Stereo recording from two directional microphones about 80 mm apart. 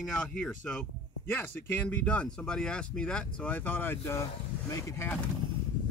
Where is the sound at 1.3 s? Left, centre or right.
Left.